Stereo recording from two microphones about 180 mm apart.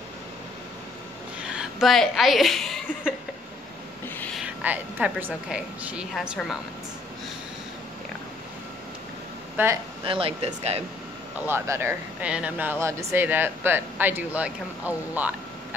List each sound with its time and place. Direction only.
1.5 s a woman's voice: 5° right (ahead or behind)
4.4 s a woman's voice: 10° right (ahead or behind)
9.6 s speech: 10° right (ahead or behind)
10.0 s speech: 30° right (ahead or behind)
11.4 s speech: 15° right (ahead or behind)